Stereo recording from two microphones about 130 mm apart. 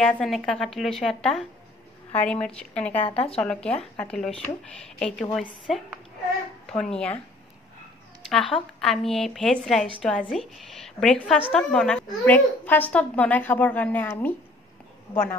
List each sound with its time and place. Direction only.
0.0 s a woman's voice: 5° left (ahead or behind)
3.1 s speech: 50° left (ahead or behind)
3.3 s a woman's voice: 5° left (ahead or behind)
6.8 s speech: 5° left (ahead or behind)
8.3 s a woman's voice: 5° left (ahead or behind)